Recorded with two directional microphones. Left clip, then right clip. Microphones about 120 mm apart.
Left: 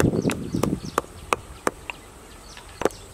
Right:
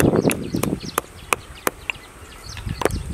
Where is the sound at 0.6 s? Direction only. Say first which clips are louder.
Right 1 dB; 10° right (ahead or behind).